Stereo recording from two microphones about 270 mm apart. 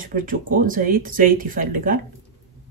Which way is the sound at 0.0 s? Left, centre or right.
Right.